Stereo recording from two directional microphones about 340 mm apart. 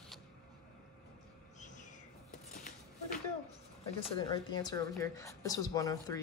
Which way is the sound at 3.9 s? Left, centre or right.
Centre.